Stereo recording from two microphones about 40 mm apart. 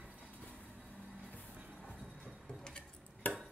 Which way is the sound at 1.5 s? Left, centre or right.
Right.